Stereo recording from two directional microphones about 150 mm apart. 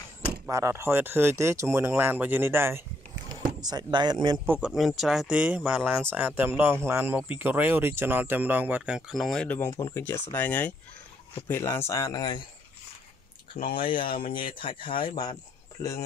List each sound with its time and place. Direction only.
0.5 s speech: 20° right (ahead or behind)
3.6 s speech: 30° right (ahead or behind)
4.5 s speech: 5° right (ahead or behind)
9.7 s speech: 20° left (ahead or behind)
13.7 s speech: 35° left (ahead or behind)